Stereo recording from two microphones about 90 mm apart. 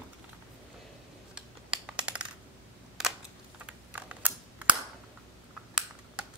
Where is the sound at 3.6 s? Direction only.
15° right (ahead or behind).